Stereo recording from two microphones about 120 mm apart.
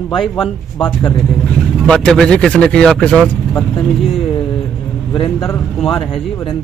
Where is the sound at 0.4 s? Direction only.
45° left (ahead or behind).